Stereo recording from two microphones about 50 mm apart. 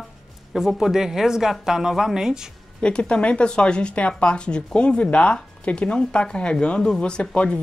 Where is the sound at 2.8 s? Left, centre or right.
Centre.